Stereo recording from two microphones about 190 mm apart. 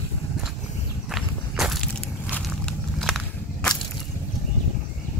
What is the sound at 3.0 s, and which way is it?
Walk, centre (ahead or behind).